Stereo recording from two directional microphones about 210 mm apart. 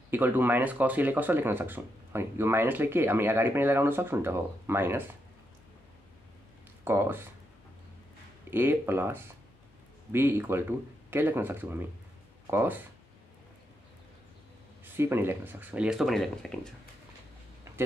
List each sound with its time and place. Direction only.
0.1 s speech: 10° right (ahead or behind)
6.8 s speech: 10° right (ahead or behind)
8.5 s speech: 10° right (ahead or behind)
15.0 s speech: 10° right (ahead or behind)
17.7 s a sound: 15° right (ahead or behind)